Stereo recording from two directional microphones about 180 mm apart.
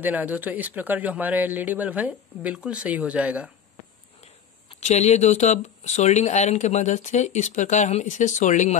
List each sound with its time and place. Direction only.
0.0 s a man's voice: 10° right (ahead or behind)
4.7 s speech: 40° left (ahead or behind)